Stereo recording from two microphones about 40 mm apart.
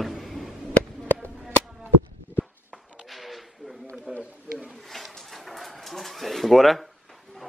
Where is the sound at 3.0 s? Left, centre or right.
Centre.